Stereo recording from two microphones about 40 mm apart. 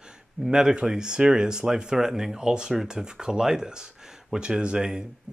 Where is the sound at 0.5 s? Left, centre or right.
Centre.